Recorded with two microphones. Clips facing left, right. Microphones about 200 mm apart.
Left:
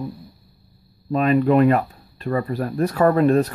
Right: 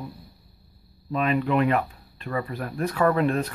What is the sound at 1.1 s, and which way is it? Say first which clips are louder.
Speech: left 7 dB; 40° left (ahead or behind).